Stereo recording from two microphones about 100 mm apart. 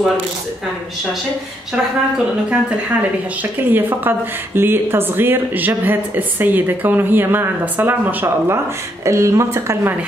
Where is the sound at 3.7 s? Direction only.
20° right (ahead or behind).